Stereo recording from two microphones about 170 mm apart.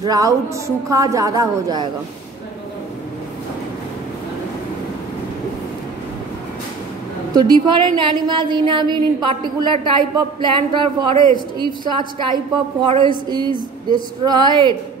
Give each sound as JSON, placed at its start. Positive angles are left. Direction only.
{"t": 0.0, "sound": "a woman's voice", "side_deg": -20}
{"t": 7.3, "sound": "a woman's voice", "side_deg": -25}